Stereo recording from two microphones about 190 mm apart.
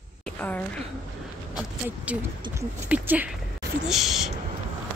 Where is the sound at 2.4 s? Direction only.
25° right (ahead or behind).